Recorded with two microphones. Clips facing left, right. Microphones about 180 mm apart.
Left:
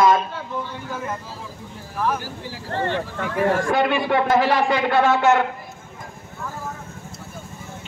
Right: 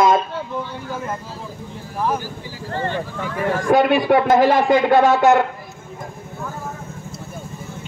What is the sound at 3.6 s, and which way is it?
Speech, 45° right (ahead or behind).